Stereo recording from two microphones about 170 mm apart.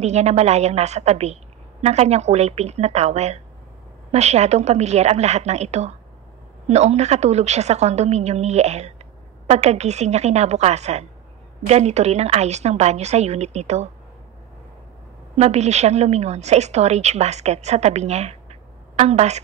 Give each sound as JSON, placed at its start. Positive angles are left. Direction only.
{"t": 0.0, "sound": "a woman's voice", "side_deg": -40}
{"t": 15.3, "sound": "a woman's voice", "side_deg": -40}